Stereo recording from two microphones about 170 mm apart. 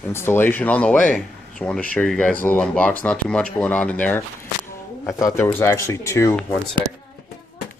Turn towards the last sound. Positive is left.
turn(degrees=10)  # may be behind; listen again after turning